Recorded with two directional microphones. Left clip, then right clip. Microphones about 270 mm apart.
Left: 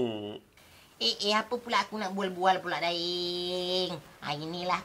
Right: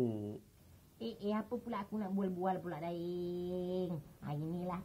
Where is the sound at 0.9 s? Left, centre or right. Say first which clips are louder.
Left 13 dB; centre.